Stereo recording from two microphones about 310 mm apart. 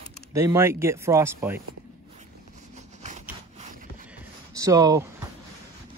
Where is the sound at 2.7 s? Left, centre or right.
Right.